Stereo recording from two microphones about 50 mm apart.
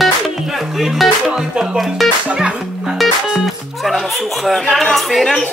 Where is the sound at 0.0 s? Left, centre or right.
Centre.